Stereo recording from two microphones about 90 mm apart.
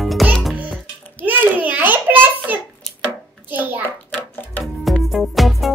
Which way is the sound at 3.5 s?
20° right (ahead or behind).